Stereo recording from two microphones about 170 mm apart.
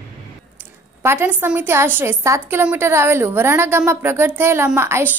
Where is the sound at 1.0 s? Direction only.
15° right (ahead or behind).